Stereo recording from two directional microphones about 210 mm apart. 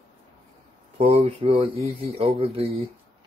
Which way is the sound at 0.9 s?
30° right (ahead or behind).